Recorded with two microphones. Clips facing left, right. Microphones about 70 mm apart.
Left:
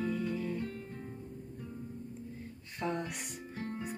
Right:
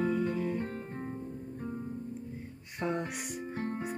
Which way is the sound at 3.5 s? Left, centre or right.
Right.